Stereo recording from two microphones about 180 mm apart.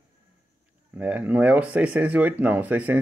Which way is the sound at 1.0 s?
10° right (ahead or behind).